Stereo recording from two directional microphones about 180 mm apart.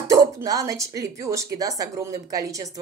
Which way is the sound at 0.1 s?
20° right (ahead or behind).